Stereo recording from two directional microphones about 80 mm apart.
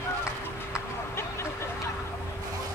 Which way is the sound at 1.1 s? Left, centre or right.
Left.